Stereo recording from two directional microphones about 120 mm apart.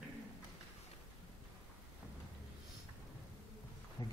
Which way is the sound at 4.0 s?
35° left (ahead or behind).